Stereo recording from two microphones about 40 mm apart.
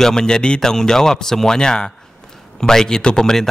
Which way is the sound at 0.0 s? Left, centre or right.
Centre.